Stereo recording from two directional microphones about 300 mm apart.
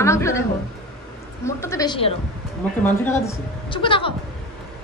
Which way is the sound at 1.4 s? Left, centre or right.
Centre.